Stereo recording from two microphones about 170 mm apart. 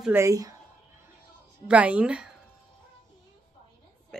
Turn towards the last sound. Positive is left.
turn(degrees=5)  # may be behind; listen again after turning